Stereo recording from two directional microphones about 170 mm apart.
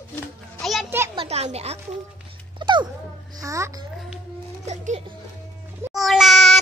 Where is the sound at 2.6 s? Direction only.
25° right (ahead or behind).